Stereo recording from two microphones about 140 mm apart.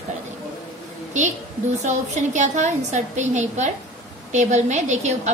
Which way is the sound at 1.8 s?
60° right (ahead or behind).